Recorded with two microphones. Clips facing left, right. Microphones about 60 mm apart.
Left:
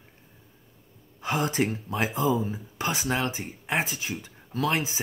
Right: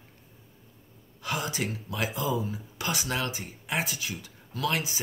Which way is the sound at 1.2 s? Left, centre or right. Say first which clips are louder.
Left 5 dB; left.